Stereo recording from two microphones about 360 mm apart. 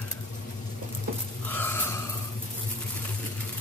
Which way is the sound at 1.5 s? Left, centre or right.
Centre.